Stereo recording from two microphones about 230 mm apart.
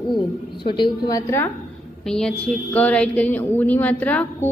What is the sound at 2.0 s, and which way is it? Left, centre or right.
A woman's voice, centre.